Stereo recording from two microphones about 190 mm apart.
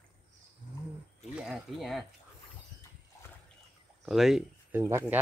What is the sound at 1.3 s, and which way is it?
Speech, 5° right (ahead or behind).